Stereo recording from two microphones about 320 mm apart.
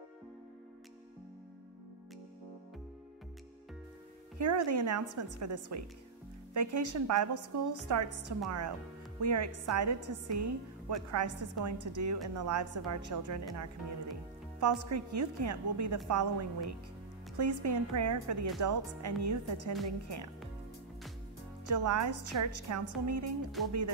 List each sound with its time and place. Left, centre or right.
4.4 s a woman's voice: right
21.6 s a woman's voice: right
23.6 s speech: centre